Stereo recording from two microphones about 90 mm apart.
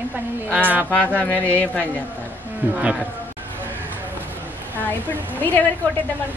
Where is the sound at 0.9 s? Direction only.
15° left (ahead or behind).